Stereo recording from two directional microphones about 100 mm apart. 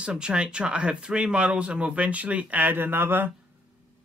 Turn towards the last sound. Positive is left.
turn(degrees=-20)  # may be behind; listen again after turning